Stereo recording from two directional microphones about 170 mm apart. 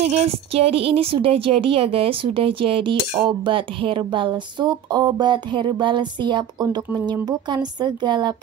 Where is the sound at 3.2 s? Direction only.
30° right (ahead or behind).